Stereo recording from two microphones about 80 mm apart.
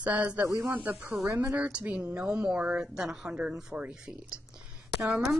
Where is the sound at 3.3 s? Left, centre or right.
Centre.